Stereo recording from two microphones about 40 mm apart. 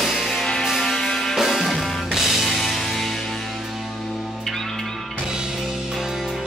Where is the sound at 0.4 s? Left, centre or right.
Centre.